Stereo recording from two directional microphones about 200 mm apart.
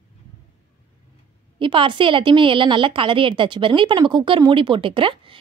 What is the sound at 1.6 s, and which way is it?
A woman's voice, 25° right (ahead or behind).